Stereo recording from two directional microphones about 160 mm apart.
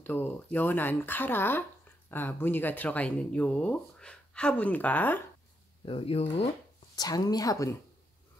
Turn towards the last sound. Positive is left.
turn(degrees=20)  # may be behind; listen again after turning